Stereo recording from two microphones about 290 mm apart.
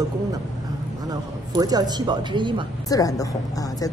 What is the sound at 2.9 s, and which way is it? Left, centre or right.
A woman's voice, centre.